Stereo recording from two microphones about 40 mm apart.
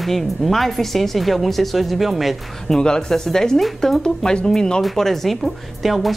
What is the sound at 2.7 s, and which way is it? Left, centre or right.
A woman's voice, left.